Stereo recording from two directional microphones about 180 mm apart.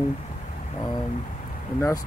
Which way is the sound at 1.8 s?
15° left (ahead or behind).